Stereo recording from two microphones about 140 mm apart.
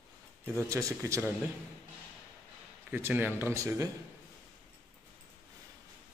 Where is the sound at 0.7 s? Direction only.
20° right (ahead or behind).